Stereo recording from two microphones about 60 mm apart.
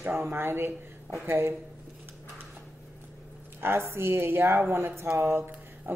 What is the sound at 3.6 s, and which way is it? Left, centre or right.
A woman's voice, right.